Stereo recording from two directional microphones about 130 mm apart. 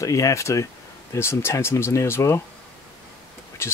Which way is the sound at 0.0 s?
25° left (ahead or behind).